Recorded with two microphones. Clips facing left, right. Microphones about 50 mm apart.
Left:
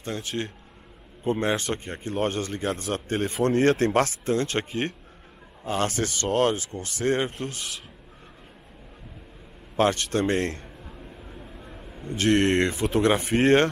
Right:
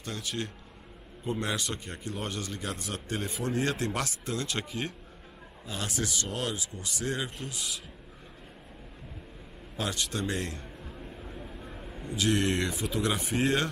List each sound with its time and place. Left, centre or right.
0.0 s speech: left
9.8 s speech: left
10.6 s a sound: centre
12.1 s speech: left